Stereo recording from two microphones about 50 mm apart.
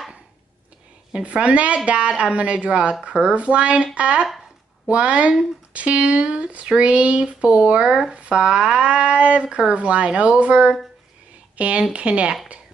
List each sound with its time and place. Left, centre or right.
1.1 s speech: right